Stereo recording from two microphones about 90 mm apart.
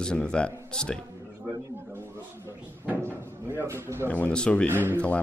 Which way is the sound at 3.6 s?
30° right (ahead or behind).